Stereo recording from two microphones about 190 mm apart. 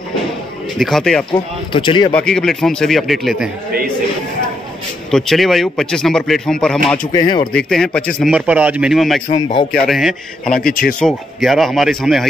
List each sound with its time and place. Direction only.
0.7 s speech: centre (ahead or behind)
1.3 s speech: 25° left (ahead or behind)
2.1 s speech: 5° left (ahead or behind)
5.1 s speech: centre (ahead or behind)
7.1 s speech: 25° left (ahead or behind)
7.5 s speech: 5° left (ahead or behind)
9.3 s speech: 25° left (ahead or behind)
9.7 s speech: centre (ahead or behind)
10.7 s speech: 45° left (ahead or behind)
11.0 s speech: centre (ahead or behind)